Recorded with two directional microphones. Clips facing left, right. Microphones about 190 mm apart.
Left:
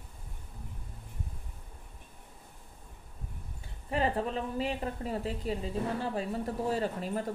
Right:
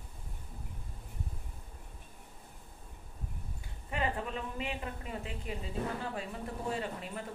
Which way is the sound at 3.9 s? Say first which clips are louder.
Left 5 dB; 35° left (ahead or behind).